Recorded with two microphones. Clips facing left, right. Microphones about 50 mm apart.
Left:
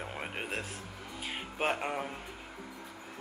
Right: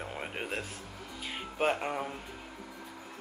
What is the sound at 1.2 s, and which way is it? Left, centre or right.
Music, centre.